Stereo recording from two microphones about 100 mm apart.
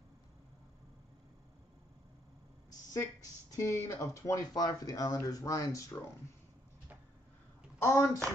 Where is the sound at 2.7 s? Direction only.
35° left (ahead or behind).